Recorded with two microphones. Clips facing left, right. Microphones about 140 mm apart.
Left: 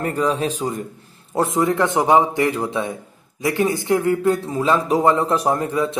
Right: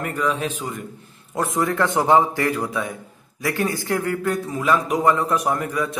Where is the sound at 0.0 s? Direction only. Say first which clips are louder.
Left 3 dB; 35° left (ahead or behind).